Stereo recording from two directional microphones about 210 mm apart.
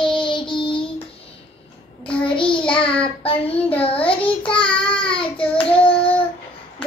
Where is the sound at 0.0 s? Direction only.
25° left (ahead or behind).